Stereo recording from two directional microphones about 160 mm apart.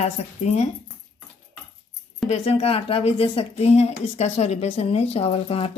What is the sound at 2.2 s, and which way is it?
Speech, 35° left (ahead or behind).